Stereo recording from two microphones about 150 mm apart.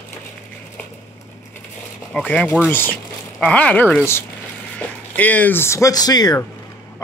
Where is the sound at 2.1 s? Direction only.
5° left (ahead or behind); by 6.5 s 25° left (ahead or behind).